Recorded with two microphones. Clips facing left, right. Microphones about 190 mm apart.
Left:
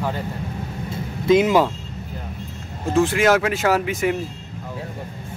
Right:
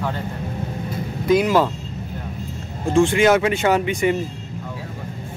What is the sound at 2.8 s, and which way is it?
Speech, 5° left (ahead or behind).